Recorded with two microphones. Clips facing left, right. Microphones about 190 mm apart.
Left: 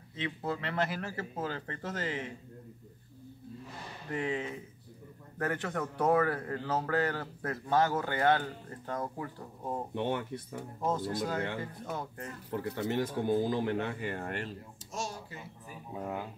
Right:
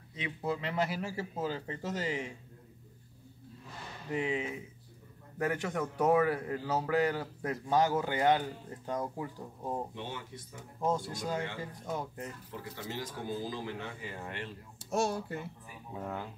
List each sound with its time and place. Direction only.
0.1 s a man's voice: 15° right (ahead or behind)
4.1 s a man's voice: 10° right (ahead or behind)
9.9 s a man's voice: 60° left (ahead or behind)
11.1 s a man's voice: 15° right (ahead or behind)
12.4 s a man's voice: 60° left (ahead or behind)
14.9 s speech: 60° right (ahead or behind)
15.9 s speech: 15° left (ahead or behind)